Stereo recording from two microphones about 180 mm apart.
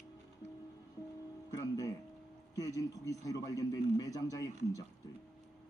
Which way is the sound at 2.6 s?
20° left (ahead or behind).